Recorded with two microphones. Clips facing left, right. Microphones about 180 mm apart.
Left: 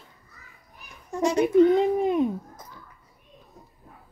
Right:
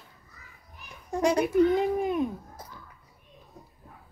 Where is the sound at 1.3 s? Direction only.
25° left (ahead or behind).